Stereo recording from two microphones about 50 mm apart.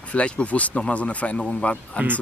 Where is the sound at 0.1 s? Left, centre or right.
Left.